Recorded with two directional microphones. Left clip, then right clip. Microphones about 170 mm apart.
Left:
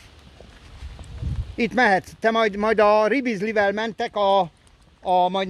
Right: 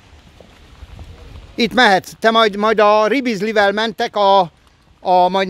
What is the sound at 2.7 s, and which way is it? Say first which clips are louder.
Speech: right 3 dB; 10° right (ahead or behind).